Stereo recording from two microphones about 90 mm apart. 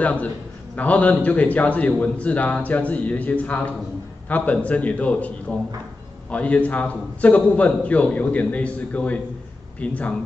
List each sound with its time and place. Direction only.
0.0 s a man's voice: 15° left (ahead or behind)
6.3 s a man's voice: 15° left (ahead or behind)